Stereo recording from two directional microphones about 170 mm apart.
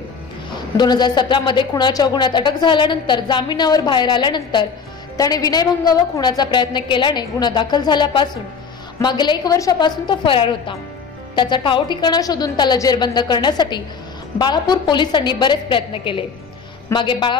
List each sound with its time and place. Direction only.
0.7 s speech: 25° left (ahead or behind)